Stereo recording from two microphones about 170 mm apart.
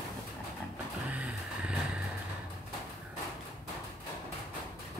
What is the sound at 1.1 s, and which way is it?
Vehicle, 10° right (ahead or behind).